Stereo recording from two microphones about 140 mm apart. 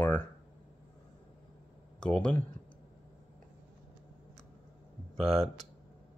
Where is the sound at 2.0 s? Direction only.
5° left (ahead or behind).